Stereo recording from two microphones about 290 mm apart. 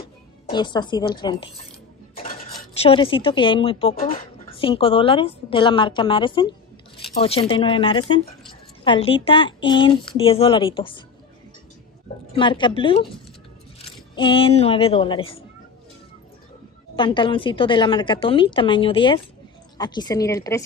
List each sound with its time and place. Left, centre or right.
0.0 s speech: centre
2.8 s speech: centre
4.6 s a woman's voice: centre
12.3 s a woman's voice: centre
16.9 s a woman's voice: centre